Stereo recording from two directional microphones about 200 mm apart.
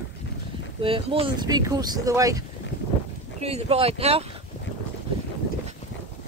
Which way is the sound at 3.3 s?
30° right (ahead or behind).